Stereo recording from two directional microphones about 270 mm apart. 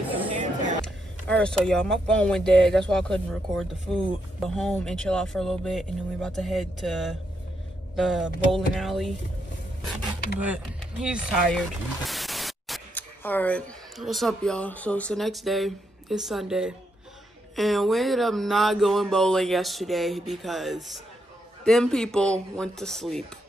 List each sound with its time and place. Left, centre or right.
1.2 s speech: centre
10.4 s speech: centre